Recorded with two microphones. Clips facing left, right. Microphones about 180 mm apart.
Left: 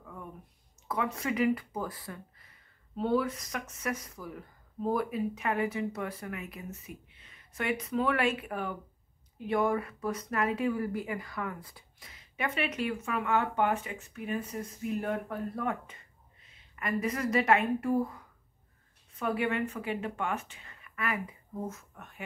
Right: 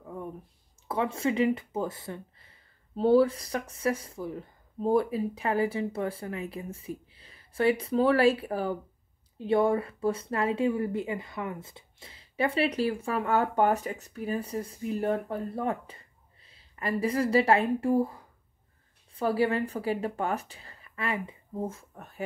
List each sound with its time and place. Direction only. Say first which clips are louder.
0.8 s a woman's voice: right 4 dB; 30° right (ahead or behind)